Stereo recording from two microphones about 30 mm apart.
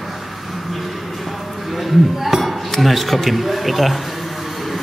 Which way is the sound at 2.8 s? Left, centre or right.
Centre.